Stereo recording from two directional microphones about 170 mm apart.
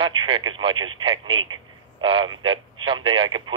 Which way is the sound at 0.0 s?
30° right (ahead or behind).